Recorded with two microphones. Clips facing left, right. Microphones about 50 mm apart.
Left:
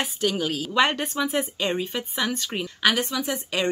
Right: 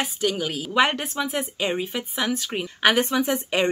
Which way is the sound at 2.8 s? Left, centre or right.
Right.